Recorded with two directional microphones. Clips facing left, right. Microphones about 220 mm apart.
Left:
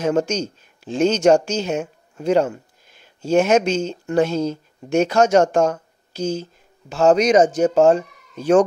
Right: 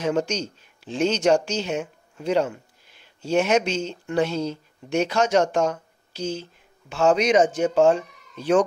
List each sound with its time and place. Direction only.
0.0 s speech: 45° left (ahead or behind)